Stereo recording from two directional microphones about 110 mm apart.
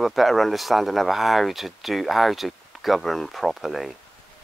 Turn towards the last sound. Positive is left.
turn(degrees=0)  # may be behind; listen again after turning